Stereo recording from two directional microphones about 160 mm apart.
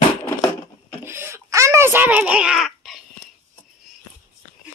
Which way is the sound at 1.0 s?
15° right (ahead or behind).